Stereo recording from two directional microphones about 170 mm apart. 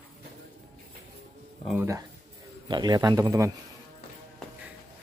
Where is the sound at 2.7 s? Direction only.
25° right (ahead or behind).